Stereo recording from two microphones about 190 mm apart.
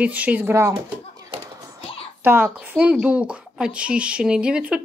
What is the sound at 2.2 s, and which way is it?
Speech, 10° right (ahead or behind).